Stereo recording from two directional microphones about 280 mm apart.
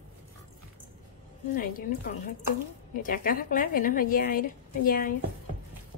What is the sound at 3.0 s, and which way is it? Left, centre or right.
Speech, left.